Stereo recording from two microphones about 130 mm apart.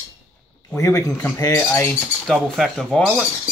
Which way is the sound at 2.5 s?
Centre (ahead or behind).